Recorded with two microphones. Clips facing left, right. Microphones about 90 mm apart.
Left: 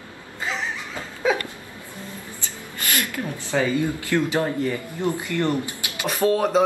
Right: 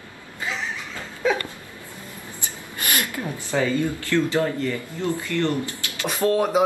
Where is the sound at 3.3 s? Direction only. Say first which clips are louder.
Even; 15° left (ahead or behind).